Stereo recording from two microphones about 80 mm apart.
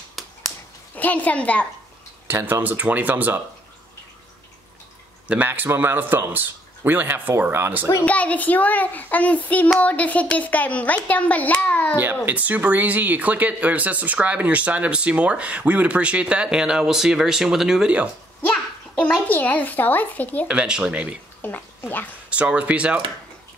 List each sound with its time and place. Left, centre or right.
0.2 s a sound: centre
0.9 s a woman's voice: left
2.2 s a man's voice: right
5.3 s a man's voice: right
8.0 s speech: centre
12.0 s speech: right; by 17.9 s centre
18.5 s a sound: centre
19.2 s speech: centre
20.4 s speech: centre
21.4 s speech: left
22.3 s speech: centre